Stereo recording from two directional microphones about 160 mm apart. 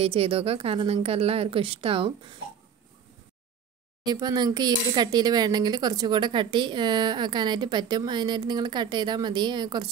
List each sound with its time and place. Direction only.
0.0 s a woman's voice: 35° right (ahead or behind)
4.0 s speech: 25° right (ahead or behind)